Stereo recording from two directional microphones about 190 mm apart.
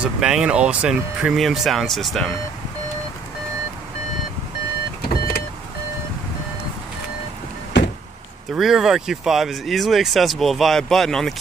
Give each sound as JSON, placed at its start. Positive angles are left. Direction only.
{"t": 0.0, "sound": "speech", "side_deg": -5}
{"t": 7.7, "sound": "vehicle", "side_deg": 65}
{"t": 8.5, "sound": "speech", "side_deg": 0}